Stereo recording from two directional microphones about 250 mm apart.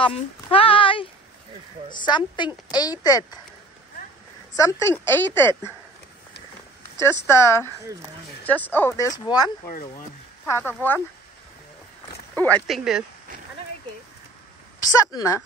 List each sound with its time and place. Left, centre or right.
0.0 s a woman's voice: left
4.6 s a woman's voice: centre
7.0 s a woman's voice: centre
10.6 s a woman's voice: centre
12.4 s speech: centre
14.8 s a woman's voice: centre